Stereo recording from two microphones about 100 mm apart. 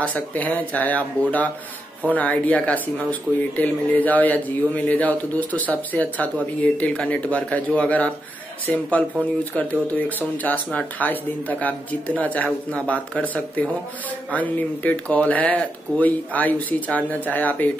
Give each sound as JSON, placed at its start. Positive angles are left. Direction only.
{"t": 0.0, "sound": "speech", "side_deg": 15}
{"t": 2.0, "sound": "speech", "side_deg": 15}